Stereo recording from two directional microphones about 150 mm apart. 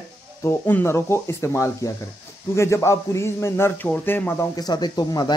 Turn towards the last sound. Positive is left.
turn(degrees=25)  # may be behind; listen again after turning